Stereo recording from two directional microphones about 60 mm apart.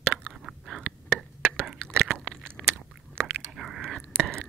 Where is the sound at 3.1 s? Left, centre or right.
Centre.